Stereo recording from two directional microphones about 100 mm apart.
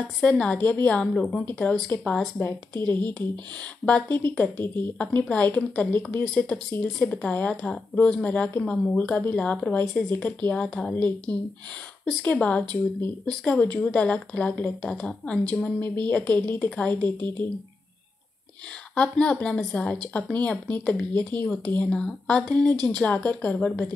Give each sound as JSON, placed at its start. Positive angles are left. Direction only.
{"t": 0.2, "sound": "a woman's voice", "side_deg": 10}
{"t": 1.1, "sound": "a woman's voice", "side_deg": 0}
{"t": 2.3, "sound": "a woman's voice", "side_deg": 20}
{"t": 18.9, "sound": "a woman's voice", "side_deg": 10}